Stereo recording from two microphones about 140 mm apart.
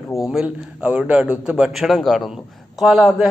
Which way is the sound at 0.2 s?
5° right (ahead or behind).